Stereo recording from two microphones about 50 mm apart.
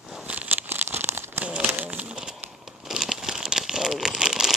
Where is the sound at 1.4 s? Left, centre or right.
Right.